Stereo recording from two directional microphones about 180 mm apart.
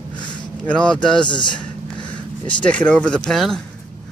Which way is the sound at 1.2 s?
25° left (ahead or behind).